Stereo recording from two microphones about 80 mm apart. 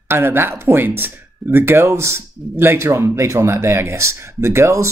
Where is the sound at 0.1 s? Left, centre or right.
Right.